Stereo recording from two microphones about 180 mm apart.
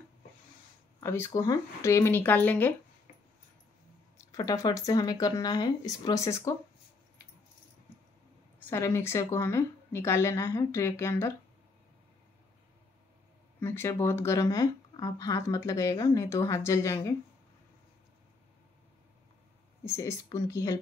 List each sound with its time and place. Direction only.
1.0 s speech: 15° left (ahead or behind)
4.3 s speech: 20° left (ahead or behind)
8.5 s speech: 15° left (ahead or behind)
13.6 s speech: 10° left (ahead or behind)
19.8 s speech: 15° left (ahead or behind)